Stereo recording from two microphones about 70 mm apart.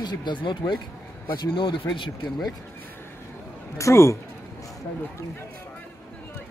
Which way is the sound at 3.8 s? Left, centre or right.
Left.